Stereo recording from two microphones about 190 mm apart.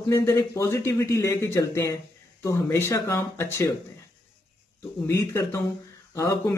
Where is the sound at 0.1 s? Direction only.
15° left (ahead or behind).